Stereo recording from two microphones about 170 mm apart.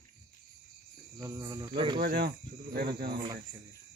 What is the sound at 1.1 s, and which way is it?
Speech, 20° right (ahead or behind).